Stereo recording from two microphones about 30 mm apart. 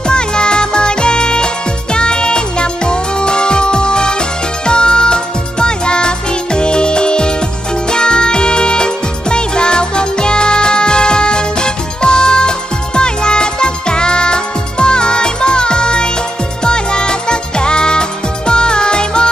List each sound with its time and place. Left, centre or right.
0.1 s music: left